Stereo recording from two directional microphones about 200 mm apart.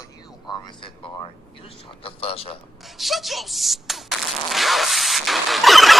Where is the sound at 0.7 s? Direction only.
25° left (ahead or behind).